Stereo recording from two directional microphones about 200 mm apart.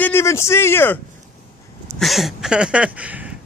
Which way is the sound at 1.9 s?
Centre (ahead or behind).